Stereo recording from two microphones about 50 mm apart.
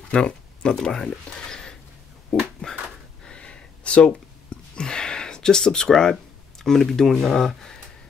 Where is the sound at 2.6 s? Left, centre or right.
Centre.